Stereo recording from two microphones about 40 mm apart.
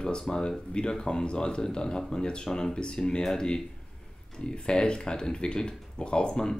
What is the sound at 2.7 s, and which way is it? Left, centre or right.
Speech, left.